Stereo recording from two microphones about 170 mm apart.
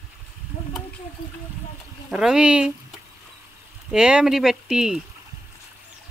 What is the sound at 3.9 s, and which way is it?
Speech, 5° right (ahead or behind).